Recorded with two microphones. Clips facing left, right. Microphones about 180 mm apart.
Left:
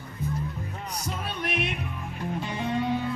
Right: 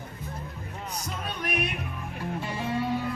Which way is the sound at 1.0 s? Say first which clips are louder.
Left 2 dB; 25° left (ahead or behind).